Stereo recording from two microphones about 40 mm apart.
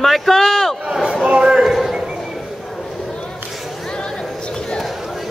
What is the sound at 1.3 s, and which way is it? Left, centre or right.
Speech, right.